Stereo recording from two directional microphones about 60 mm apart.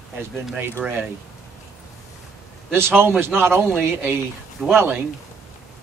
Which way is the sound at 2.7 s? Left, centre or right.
Right.